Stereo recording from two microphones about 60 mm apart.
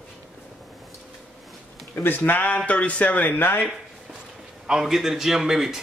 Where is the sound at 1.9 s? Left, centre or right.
Left.